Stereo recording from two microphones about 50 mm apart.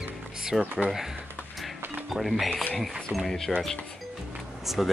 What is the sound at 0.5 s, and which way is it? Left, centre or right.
Speech, centre.